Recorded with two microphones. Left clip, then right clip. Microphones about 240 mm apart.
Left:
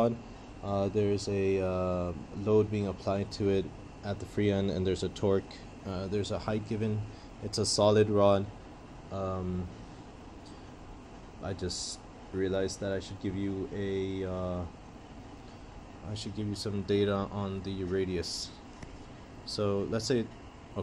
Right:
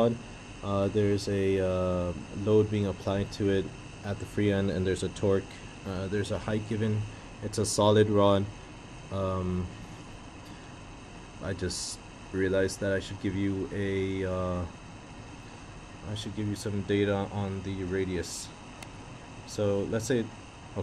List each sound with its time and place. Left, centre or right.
0.7 s speech: centre
11.4 s speech: centre
16.1 s speech: centre
17.9 s speech: left
19.5 s speech: centre